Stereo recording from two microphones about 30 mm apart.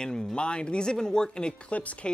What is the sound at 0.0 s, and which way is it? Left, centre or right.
Speech, left.